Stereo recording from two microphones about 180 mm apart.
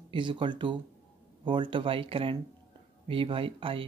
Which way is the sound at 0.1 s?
25° right (ahead or behind).